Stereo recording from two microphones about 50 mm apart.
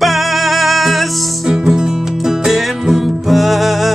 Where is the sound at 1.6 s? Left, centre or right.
Centre.